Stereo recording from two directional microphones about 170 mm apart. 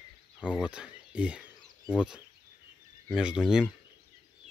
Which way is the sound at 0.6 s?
5° right (ahead or behind).